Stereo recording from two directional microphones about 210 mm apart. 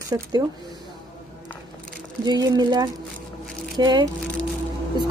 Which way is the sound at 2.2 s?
20° right (ahead or behind).